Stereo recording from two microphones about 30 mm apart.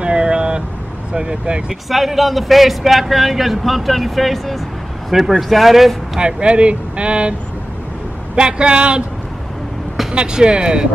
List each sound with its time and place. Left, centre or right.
0.0 s vehicle: right
1.1 s speech: right
1.7 s speech: centre
6.1 s speech: right
8.4 s speech: right
10.1 s speech: right